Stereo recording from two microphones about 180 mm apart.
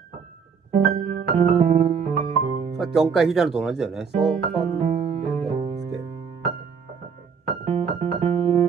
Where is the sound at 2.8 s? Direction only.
Centre (ahead or behind).